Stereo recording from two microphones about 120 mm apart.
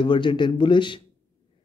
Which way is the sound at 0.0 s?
40° left (ahead or behind).